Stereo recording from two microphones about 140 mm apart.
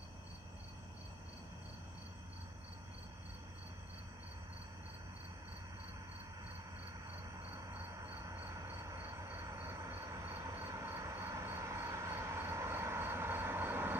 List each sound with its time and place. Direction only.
7.5 s train: 20° right (ahead or behind)